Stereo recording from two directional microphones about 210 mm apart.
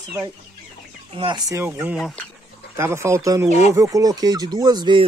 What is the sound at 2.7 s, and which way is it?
Speech, 15° right (ahead or behind).